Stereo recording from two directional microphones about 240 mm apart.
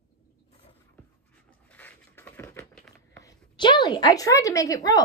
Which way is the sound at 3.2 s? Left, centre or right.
Centre.